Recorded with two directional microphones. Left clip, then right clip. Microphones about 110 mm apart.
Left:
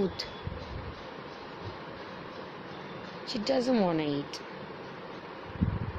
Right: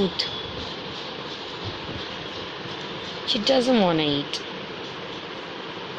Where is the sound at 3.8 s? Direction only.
10° left (ahead or behind).